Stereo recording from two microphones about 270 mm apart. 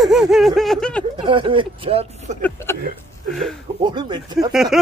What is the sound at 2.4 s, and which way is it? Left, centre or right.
Speech, centre.